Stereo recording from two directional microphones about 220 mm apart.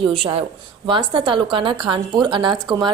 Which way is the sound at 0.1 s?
25° right (ahead or behind).